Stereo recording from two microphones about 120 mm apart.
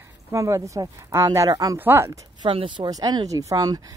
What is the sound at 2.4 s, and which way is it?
A woman's voice, 45° right (ahead or behind).